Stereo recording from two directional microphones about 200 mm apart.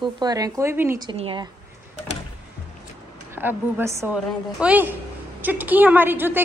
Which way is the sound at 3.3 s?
10° right (ahead or behind).